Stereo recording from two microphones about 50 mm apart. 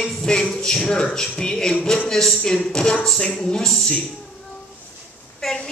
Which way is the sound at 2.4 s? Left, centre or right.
Centre.